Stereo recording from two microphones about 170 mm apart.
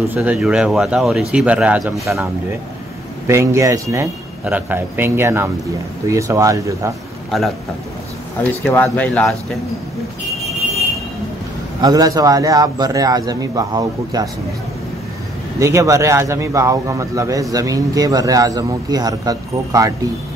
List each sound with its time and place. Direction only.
0.1 s speech: 10° right (ahead or behind)
3.3 s speech: 15° right (ahead or behind)
7.2 s a man's voice: centre (ahead or behind)
8.6 s speech: 10° left (ahead or behind)
11.8 s a man's voice: 20° right (ahead or behind)
15.6 s a man's voice: 15° right (ahead or behind)